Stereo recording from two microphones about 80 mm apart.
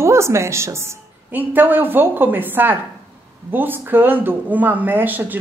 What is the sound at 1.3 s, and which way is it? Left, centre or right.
Speech, right.